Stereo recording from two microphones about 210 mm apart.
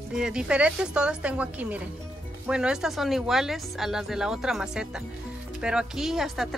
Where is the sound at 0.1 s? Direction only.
5° right (ahead or behind).